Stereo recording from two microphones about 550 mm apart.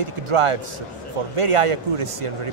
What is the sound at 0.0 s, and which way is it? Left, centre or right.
Speech, right.